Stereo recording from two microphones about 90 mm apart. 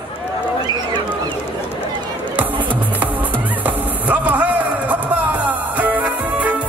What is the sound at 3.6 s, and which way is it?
Music, 20° right (ahead or behind).